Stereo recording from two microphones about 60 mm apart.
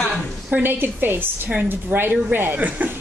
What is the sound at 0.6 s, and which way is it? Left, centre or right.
A woman's voice, right.